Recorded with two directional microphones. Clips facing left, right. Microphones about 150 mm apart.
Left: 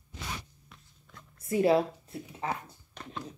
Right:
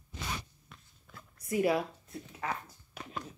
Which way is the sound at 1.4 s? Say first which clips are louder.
Left 5 dB; 25° left (ahead or behind).